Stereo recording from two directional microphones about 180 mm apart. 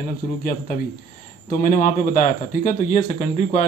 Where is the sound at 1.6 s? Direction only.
45° left (ahead or behind).